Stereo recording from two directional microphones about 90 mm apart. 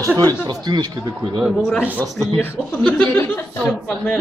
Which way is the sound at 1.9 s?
20° right (ahead or behind).